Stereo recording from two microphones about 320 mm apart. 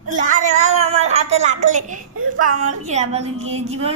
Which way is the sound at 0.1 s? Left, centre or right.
Right.